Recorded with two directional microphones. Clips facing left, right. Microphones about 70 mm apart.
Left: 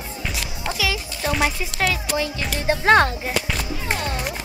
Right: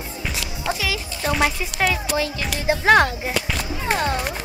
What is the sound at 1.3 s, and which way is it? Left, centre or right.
Speech, centre.